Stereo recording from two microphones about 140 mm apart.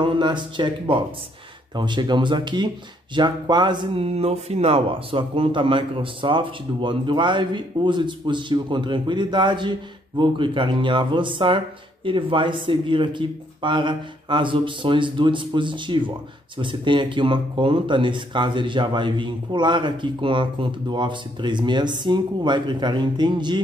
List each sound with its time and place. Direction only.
0.0 s speech: 35° right (ahead or behind)